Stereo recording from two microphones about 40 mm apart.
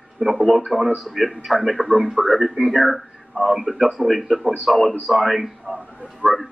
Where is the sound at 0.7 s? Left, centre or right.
Centre.